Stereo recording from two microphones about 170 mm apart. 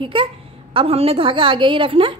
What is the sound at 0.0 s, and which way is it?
A woman's voice, 30° right (ahead or behind).